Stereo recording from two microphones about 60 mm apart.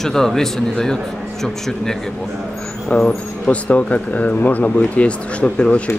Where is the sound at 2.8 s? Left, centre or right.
Centre.